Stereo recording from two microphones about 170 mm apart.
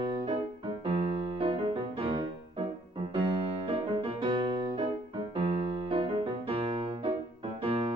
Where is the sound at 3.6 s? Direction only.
30° right (ahead or behind).